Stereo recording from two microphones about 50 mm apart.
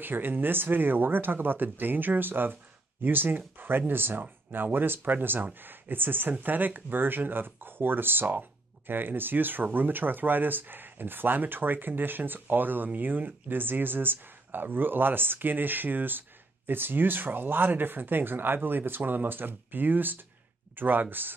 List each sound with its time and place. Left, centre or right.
0.0 s speech: right